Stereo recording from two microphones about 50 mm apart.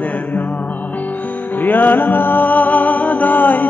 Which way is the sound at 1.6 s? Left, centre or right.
Left.